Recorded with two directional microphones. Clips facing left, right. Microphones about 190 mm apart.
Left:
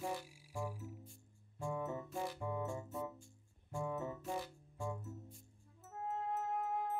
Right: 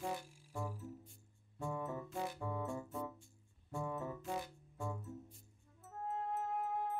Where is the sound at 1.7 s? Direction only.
20° left (ahead or behind).